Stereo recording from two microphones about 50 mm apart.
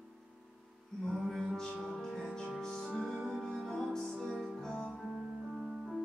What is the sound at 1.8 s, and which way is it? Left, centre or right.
Music, centre.